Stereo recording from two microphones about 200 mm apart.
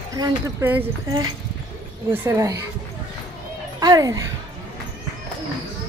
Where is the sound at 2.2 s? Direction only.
15° right (ahead or behind).